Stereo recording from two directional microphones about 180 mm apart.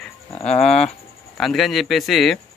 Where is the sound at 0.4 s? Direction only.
35° left (ahead or behind).